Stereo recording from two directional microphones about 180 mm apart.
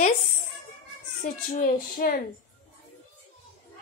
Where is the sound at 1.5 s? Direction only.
45° left (ahead or behind).